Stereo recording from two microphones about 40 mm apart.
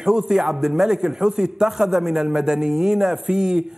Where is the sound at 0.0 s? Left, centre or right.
Centre.